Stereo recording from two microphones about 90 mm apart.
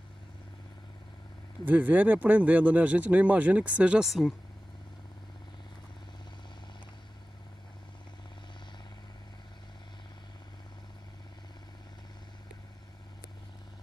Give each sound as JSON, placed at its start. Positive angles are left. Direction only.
{"t": 1.6, "sound": "speech", "side_deg": -20}